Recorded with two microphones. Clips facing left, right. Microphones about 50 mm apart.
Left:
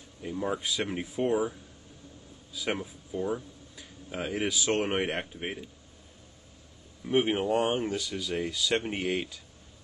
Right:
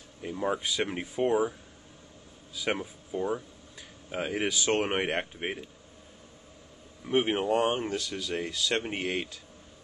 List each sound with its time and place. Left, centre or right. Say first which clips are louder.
0.2 s speech: right 1 dB; centre
2.5 s a man's voice: right 1 dB; centre
7.1 s speech: even; centre